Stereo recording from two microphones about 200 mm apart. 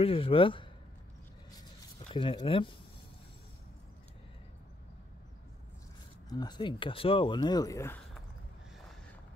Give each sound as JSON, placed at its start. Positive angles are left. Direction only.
{"t": 0.0, "sound": "speech", "side_deg": 30}
{"t": 2.1, "sound": "speech", "side_deg": 25}
{"t": 6.2, "sound": "speech", "side_deg": 20}